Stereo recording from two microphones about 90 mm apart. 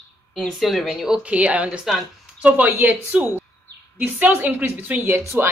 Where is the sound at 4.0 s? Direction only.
20° right (ahead or behind).